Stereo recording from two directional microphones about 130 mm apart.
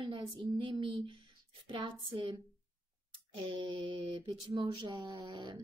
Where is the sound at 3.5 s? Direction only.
35° right (ahead or behind).